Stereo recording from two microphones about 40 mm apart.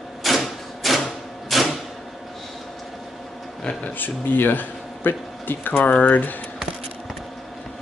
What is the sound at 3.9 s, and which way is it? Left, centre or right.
Speech, left.